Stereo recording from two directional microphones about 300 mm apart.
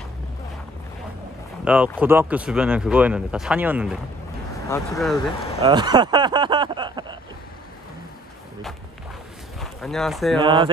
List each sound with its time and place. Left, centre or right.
1.6 s speech: centre
5.6 s a sound: centre
9.6 s speech: centre
10.4 s speech: centre